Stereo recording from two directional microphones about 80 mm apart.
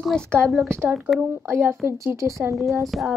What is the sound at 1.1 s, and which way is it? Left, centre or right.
Speech, right.